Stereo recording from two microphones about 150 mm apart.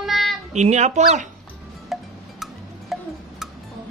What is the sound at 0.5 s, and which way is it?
Speech, 50° right (ahead or behind).